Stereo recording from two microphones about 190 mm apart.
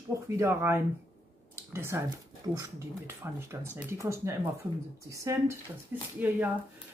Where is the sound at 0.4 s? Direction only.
10° right (ahead or behind).